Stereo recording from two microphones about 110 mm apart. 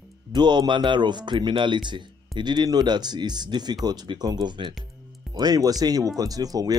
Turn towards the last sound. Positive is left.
turn(degrees=-35)  # may be behind; listen again after turning